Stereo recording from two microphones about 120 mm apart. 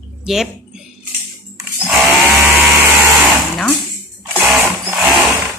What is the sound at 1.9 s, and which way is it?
Drill, 15° right (ahead or behind).